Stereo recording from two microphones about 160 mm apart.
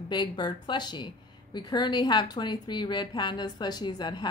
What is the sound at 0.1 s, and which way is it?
A woman's voice, 30° left (ahead or behind).